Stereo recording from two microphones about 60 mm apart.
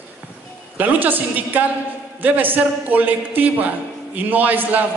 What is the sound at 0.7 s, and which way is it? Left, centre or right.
A woman's voice, right.